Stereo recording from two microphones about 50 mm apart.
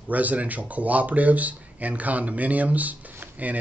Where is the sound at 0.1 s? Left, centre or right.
Right.